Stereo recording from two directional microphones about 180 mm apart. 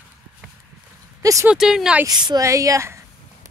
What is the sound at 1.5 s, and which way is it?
Speech, 5° right (ahead or behind).